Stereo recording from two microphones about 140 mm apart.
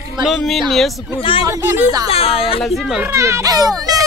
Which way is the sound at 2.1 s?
45° left (ahead or behind).